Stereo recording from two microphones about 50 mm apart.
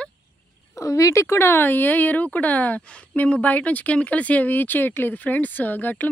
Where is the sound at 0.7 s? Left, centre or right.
Left.